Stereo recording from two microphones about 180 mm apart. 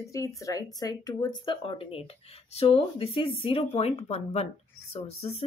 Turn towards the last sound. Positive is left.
turn(degrees=35)  # may be behind; listen again after turning